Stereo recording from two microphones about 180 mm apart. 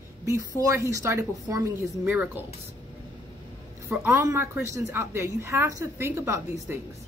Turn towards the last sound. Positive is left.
turn(degrees=-15)  # may be behind; listen again after turning